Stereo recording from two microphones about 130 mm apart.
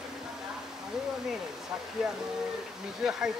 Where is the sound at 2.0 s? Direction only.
5° right (ahead or behind).